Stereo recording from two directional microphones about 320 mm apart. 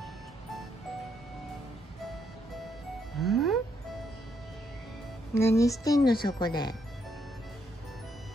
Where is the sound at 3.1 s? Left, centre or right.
Centre.